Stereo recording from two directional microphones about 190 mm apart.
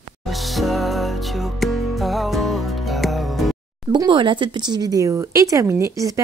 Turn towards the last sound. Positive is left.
turn(degrees=-15)  # may be behind; listen again after turning